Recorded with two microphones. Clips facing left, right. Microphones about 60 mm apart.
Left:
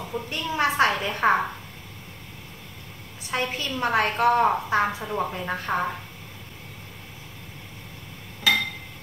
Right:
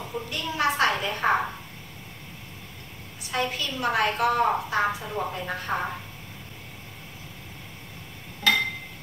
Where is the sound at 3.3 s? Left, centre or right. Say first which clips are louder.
Left 1 dB; left.